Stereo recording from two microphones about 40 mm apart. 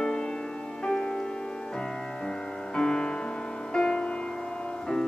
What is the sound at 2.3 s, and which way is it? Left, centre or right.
Music, centre.